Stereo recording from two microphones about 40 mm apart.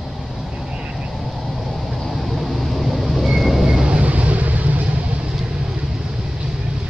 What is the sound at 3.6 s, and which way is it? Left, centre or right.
Vehicle, centre.